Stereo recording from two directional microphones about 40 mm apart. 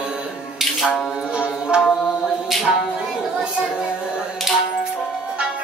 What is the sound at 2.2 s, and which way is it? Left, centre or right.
Mantra, centre.